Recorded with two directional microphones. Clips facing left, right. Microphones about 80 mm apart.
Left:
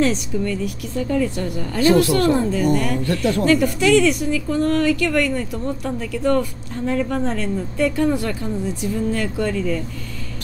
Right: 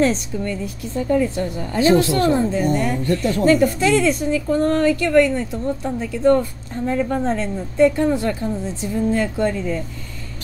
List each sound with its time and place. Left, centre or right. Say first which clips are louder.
0.0 s a woman's voice: right 1 dB; right